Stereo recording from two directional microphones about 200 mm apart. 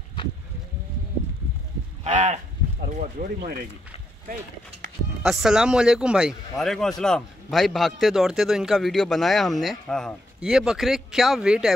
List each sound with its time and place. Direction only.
2.0 s speech: 35° right (ahead or behind)
5.2 s a man's voice: centre (ahead or behind)